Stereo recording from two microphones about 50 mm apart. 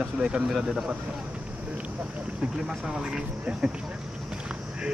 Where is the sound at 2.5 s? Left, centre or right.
Centre.